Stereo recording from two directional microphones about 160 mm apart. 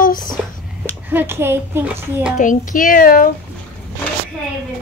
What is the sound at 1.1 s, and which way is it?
A child's voice, 15° right (ahead or behind).